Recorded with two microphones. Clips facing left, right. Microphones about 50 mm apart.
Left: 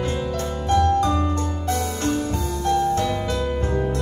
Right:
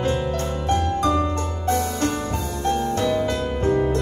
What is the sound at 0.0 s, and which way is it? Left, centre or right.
Music, right.